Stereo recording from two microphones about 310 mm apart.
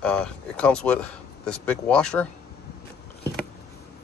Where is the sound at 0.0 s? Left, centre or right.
Centre.